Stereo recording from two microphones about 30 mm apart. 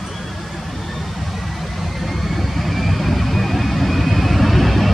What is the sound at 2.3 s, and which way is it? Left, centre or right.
Vehicle, centre.